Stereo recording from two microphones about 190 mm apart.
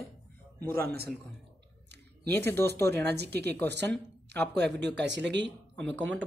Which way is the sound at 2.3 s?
10° left (ahead or behind).